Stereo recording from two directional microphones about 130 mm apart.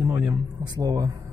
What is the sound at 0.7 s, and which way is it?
Speech, 30° right (ahead or behind).